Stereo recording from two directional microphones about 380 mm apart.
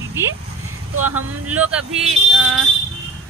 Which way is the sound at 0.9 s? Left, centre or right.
Right.